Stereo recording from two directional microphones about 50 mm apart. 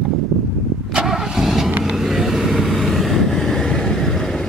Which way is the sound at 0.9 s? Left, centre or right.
Centre.